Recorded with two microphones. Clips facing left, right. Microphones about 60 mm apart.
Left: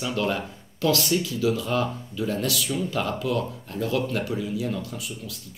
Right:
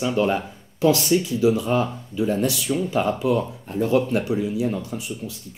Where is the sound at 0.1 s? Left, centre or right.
Right.